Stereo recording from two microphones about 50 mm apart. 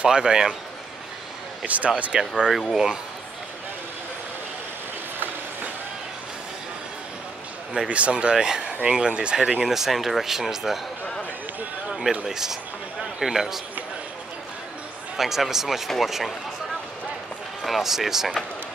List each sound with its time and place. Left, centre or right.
0.0 s speech: centre
1.6 s speech: right
2.1 s speech: centre
7.9 s speech: right; by 10.8 s centre
11.9 s a sound: centre
12.3 s speech: centre
15.1 s speech: centre
17.6 s speech: centre